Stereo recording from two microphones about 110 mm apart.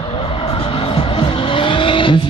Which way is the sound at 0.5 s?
55° left (ahead or behind).